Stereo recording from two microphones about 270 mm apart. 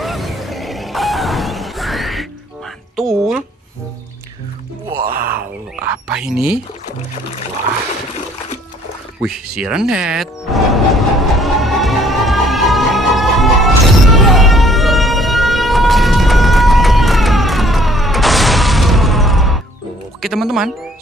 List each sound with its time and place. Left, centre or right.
0.0 s music: centre
5.1 s a sound: right
5.9 s music: centre
9.2 s music: centre
14.1 s a sound: centre
20.2 s speech: centre